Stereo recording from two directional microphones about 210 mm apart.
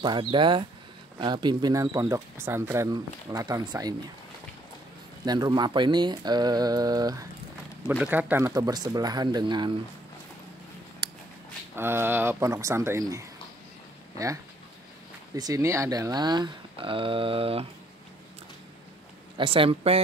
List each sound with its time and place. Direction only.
0.0 s speech: 20° right (ahead or behind)
5.2 s speech: 20° right (ahead or behind)
7.8 s speech: 5° right (ahead or behind); by 9.8 s 20° right (ahead or behind)
11.0 s a sound: 20° right (ahead or behind)
11.7 s speech: 10° right (ahead or behind); by 17.6 s 25° right (ahead or behind)
19.3 s speech: 25° right (ahead or behind)